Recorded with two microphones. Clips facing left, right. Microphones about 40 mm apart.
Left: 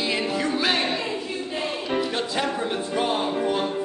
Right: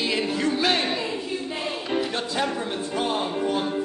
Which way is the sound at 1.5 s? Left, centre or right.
Centre.